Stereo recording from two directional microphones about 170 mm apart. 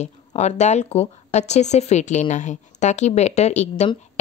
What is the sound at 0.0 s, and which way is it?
Speech, 40° left (ahead or behind).